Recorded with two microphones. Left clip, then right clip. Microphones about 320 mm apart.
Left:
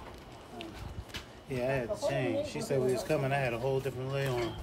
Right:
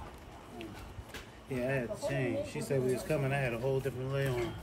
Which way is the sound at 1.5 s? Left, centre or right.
Centre.